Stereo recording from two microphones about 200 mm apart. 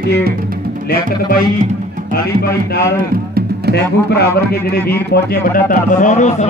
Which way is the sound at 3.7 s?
55° left (ahead or behind).